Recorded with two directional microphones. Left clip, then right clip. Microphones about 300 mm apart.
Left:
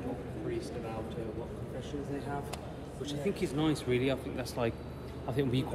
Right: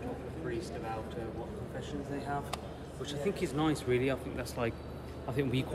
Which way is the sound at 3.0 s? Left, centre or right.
Centre.